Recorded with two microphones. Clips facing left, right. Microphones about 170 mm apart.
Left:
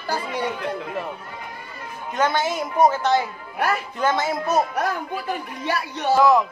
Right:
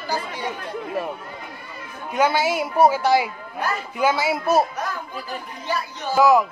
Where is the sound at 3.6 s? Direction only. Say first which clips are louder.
Left 3 dB; 65° left (ahead or behind).